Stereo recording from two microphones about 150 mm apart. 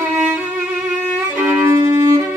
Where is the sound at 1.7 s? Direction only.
20° right (ahead or behind).